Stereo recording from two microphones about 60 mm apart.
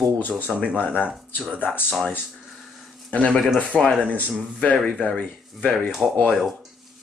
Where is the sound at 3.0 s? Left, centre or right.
Centre.